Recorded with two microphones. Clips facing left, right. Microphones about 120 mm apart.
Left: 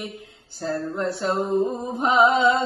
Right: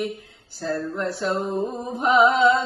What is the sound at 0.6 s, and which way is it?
Carnatic music, 25° left (ahead or behind).